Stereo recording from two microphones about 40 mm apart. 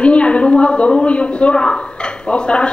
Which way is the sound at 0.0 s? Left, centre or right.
Left.